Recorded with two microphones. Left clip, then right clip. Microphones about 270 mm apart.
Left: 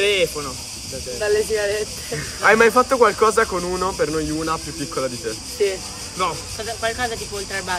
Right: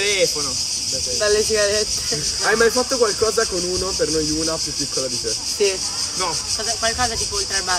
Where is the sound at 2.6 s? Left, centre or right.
Centre.